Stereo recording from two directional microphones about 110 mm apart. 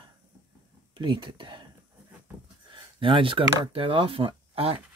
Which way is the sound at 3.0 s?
50° right (ahead or behind).